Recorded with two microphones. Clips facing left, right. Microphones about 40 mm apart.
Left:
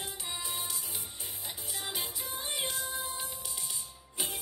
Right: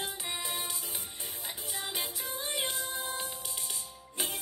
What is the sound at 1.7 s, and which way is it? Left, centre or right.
Music, centre.